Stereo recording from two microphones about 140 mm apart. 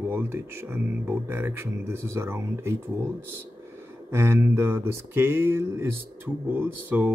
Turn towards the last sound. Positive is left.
turn(degrees=-15)  # may be behind; listen again after turning